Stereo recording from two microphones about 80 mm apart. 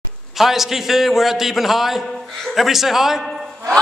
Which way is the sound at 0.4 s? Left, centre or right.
Centre.